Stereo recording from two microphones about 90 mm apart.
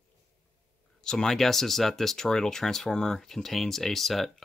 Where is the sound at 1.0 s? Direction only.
5° left (ahead or behind).